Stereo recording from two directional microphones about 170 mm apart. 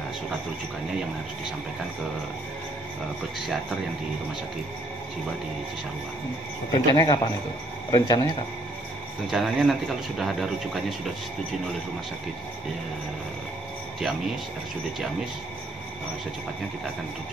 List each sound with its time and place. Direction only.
6.7 s speech: 25° left (ahead or behind)
9.3 s speech: centre (ahead or behind)